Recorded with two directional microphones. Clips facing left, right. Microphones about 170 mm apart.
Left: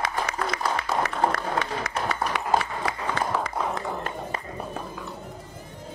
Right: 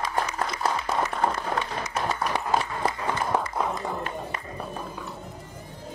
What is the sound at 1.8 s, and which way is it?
Run, 70° left (ahead or behind).